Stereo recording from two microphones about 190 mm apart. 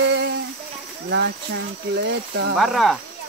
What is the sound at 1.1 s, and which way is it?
Speech, 65° right (ahead or behind).